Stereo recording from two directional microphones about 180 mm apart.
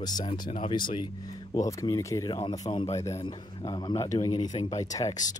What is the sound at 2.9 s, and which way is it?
Speech, 15° left (ahead or behind).